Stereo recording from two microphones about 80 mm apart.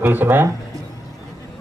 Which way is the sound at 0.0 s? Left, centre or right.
Right.